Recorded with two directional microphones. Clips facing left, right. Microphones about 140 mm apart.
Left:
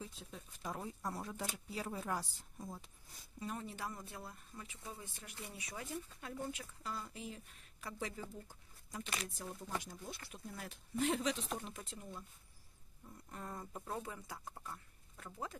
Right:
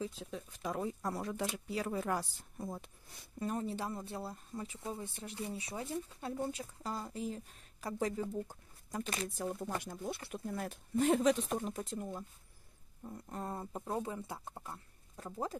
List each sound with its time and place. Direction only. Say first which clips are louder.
0.0 s speech: right 9 dB; 90° right; by 2.9 s 65° right (ahead or behind)
3.3 s speech: right 7 dB; 40° right (ahead or behind)
13.3 s speech: right 5 dB; 35° right (ahead or behind)